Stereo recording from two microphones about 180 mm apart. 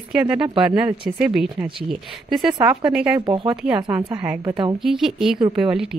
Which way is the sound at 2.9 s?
5° right (ahead or behind).